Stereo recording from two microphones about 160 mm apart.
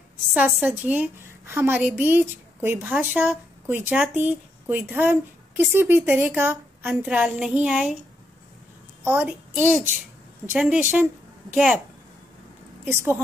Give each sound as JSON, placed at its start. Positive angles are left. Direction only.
{"t": 0.3, "sound": "a woman's voice", "side_deg": -5}
{"t": 9.0, "sound": "a child's voice", "side_deg": -15}
{"t": 10.6, "sound": "a woman's voice", "side_deg": -10}
{"t": 12.8, "sound": "a woman's voice", "side_deg": -15}